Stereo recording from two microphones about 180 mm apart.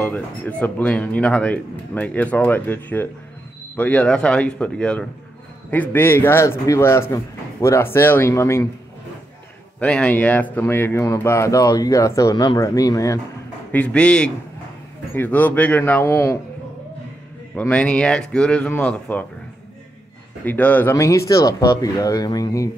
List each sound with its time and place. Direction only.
0.0 s speech: 10° left (ahead or behind)
9.8 s speech: 5° left (ahead or behind)
13.7 s speech: 5° left (ahead or behind)
17.6 s speech: 5° left (ahead or behind)
20.4 s speech: 10° left (ahead or behind)